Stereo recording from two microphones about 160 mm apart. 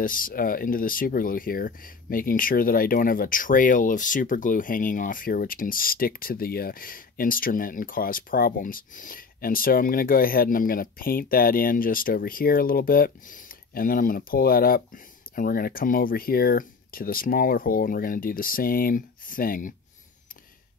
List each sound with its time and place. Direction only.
0.0 s speech: 60° left (ahead or behind)